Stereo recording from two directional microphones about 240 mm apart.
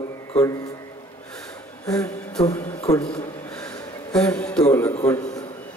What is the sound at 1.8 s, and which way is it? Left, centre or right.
Speech, centre.